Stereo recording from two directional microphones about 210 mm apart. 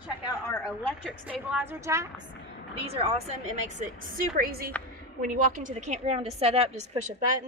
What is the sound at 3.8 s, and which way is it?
A woman's voice, 40° right (ahead or behind).